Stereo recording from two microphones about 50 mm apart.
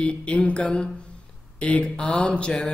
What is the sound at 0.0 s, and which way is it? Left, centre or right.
A man's voice, left.